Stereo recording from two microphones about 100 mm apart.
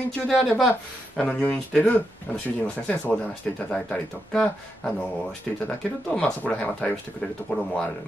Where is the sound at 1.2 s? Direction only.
15° left (ahead or behind).